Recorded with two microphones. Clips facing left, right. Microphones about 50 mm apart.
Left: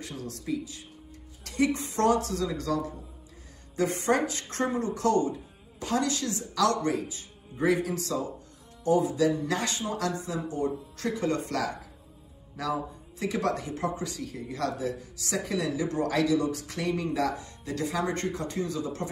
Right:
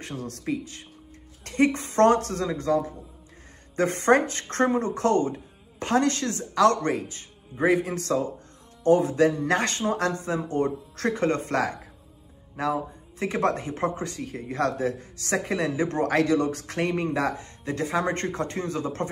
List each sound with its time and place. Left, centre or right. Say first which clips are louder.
0.0 s speech: right 4 dB; right
3.7 s speech: right 5 dB; right
7.5 s speech: right 3 dB; right
7.9 s speech: right 5 dB; right